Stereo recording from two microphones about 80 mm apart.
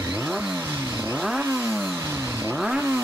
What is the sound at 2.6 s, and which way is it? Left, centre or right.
Vehicle, centre.